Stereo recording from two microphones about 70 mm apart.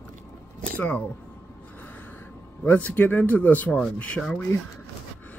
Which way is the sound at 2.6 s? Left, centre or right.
Left.